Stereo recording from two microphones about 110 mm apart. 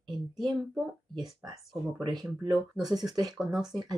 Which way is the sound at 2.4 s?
35° right (ahead or behind).